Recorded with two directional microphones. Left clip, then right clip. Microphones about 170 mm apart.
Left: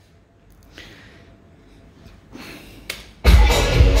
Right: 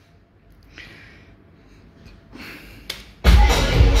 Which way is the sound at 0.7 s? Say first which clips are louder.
Right 1 dB; 25° left (ahead or behind).